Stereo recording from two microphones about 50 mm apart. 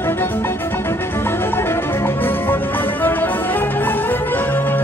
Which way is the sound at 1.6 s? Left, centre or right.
Left.